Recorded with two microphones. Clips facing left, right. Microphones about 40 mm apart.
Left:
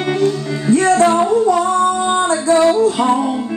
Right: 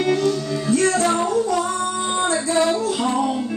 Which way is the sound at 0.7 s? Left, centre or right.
Left.